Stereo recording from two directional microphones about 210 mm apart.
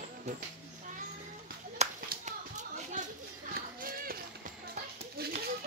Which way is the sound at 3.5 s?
45° right (ahead or behind).